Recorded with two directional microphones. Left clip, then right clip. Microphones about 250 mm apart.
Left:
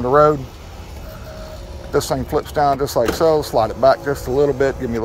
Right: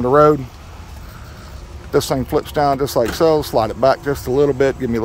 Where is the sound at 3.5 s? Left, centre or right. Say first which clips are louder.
Left 1 dB; right.